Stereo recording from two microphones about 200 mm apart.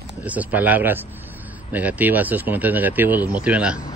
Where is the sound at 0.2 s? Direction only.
10° right (ahead or behind).